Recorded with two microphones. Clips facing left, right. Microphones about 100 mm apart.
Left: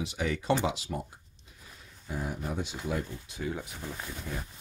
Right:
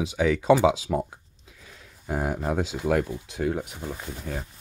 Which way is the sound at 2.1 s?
85° right.